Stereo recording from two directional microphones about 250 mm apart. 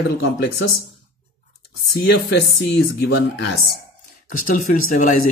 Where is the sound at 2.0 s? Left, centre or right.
Left.